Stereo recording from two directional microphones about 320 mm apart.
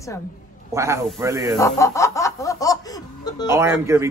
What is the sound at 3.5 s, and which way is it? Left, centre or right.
Speech, centre.